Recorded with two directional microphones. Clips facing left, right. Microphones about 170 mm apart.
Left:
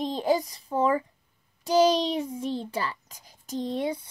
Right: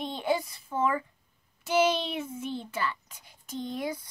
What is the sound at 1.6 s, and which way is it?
A child's voice, 35° left (ahead or behind).